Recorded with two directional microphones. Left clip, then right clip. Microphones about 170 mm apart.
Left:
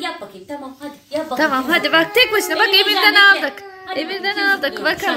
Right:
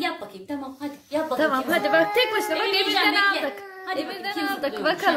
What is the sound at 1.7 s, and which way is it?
A woman's voice, centre (ahead or behind).